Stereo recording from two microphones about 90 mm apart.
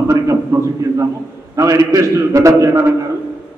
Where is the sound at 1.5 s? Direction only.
35° right (ahead or behind).